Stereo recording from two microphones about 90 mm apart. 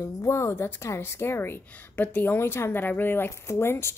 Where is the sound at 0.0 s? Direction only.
35° left (ahead or behind).